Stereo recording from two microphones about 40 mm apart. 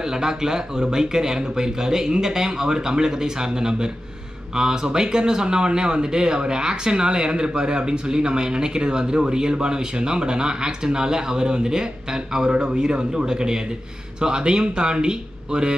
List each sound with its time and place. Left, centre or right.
0.0 s speech: centre